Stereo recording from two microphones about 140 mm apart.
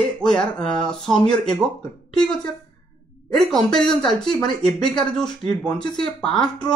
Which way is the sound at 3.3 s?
Centre (ahead or behind).